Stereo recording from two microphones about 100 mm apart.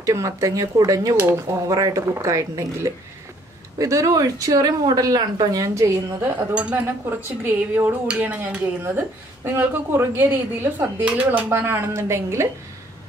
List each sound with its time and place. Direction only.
0.0 s speech: 30° right (ahead or behind)
1.1 s a woman's voice: 25° right (ahead or behind)
1.7 s speech: 35° right (ahead or behind)
6.5 s speech: 15° right (ahead or behind)
8.8 s a woman's voice: 25° right (ahead or behind)